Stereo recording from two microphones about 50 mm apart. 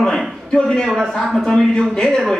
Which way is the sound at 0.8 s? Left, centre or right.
Centre.